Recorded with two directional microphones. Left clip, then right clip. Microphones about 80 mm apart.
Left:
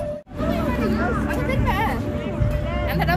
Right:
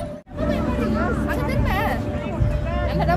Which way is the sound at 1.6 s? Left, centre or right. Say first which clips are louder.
Left 2 dB; right.